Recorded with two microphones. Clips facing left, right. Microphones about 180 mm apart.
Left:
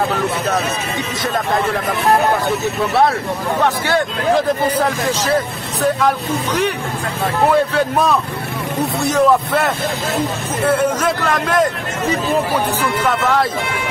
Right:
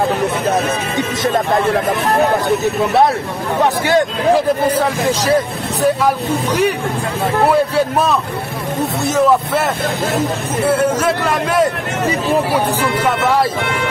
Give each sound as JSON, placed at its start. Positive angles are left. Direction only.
{"t": 3.6, "sound": "a man's voice", "side_deg": -15}
{"t": 5.8, "sound": "a man's voice", "side_deg": -10}
{"t": 9.0, "sound": "a man's voice", "side_deg": 0}